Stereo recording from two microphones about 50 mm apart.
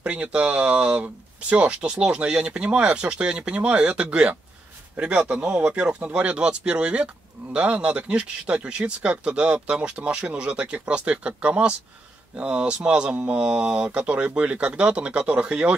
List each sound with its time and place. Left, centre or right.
0.0 s speech: right